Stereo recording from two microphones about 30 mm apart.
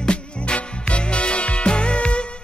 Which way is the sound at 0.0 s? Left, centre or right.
Left.